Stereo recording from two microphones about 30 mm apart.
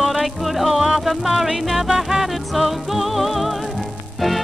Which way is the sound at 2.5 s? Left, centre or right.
Centre.